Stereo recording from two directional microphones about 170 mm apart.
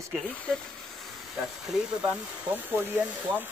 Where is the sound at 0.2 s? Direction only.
10° left (ahead or behind).